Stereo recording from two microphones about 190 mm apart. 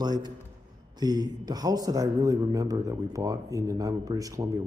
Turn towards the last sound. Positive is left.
turn(degrees=-15)  # may be behind; listen again after turning